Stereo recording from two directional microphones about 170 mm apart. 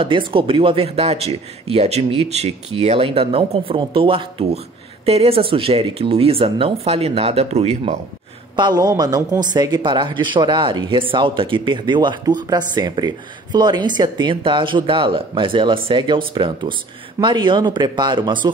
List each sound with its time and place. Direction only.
0.0 s speech: 30° right (ahead or behind)
8.5 s speech: 25° right (ahead or behind)